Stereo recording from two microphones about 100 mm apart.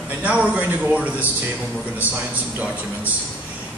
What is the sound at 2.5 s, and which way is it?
Speech, 15° right (ahead or behind).